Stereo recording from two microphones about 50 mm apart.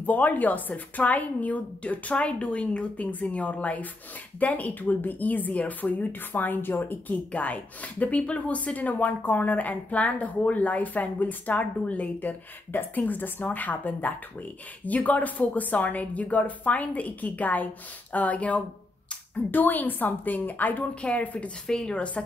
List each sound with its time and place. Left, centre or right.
0.0 s a woman's voice: left
3.0 s a woman's voice: left
7.3 s a woman's voice: left
21.6 s speech: centre
21.9 s speech: left